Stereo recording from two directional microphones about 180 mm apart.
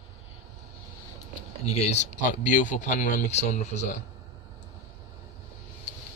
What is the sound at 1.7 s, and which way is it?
Speech, 35° left (ahead or behind).